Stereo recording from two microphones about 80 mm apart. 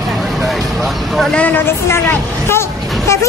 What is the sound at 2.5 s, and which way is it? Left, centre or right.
Vehicle, left.